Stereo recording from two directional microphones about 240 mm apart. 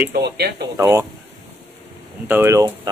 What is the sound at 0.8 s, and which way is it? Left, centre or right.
Speech, centre.